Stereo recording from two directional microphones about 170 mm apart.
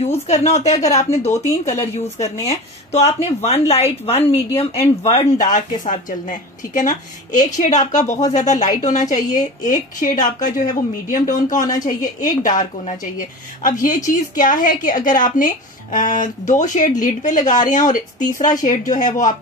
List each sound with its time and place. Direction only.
0.0 s speech: 40° left (ahead or behind)
5.4 s a woman's voice: 50° left (ahead or behind)
14.0 s a woman's voice: 50° left (ahead or behind)
18.9 s a woman's voice: 45° left (ahead or behind)